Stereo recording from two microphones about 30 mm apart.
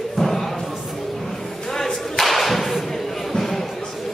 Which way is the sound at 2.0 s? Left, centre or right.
Centre.